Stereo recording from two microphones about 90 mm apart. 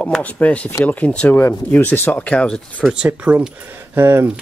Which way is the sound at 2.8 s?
5° right (ahead or behind).